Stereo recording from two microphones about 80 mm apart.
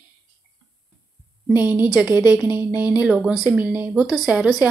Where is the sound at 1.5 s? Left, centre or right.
Centre.